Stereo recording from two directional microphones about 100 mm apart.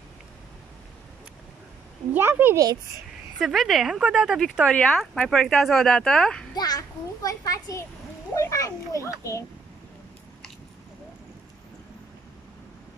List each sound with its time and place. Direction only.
2.1 s speech: 20° right (ahead or behind)
3.3 s speech: centre (ahead or behind)
4.6 s speech: 10° left (ahead or behind)
6.5 s a child's voice: 40° left (ahead or behind)